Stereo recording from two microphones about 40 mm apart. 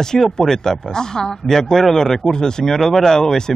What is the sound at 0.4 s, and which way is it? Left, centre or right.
Speech, centre.